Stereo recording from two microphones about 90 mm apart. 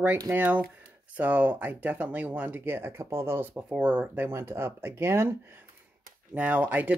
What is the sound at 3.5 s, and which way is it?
Speech, 15° right (ahead or behind).